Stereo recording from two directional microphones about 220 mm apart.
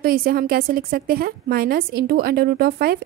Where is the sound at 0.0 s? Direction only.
40° right (ahead or behind).